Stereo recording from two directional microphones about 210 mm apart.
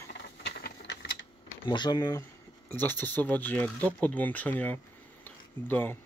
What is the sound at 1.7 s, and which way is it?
Speech, 20° left (ahead or behind).